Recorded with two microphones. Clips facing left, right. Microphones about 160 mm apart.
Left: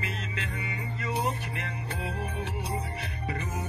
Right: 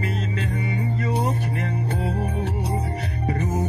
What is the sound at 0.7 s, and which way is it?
Music, 40° right (ahead or behind).